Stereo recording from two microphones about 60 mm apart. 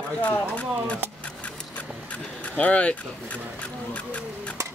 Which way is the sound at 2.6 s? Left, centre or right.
Left.